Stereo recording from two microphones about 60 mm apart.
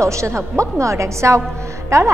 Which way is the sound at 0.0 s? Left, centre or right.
Right.